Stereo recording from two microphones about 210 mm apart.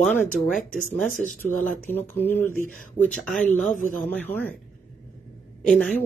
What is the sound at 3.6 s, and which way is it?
Speech, 5° left (ahead or behind).